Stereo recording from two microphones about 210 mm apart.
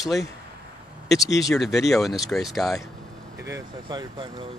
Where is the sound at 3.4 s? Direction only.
15° right (ahead or behind).